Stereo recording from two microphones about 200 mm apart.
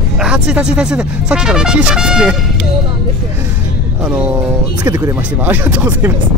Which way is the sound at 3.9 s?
5° right (ahead or behind).